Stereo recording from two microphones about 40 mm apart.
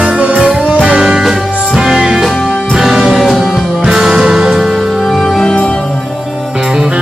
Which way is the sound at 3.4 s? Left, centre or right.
Centre.